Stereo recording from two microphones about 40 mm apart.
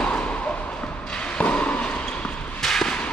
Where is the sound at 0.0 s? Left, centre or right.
Left.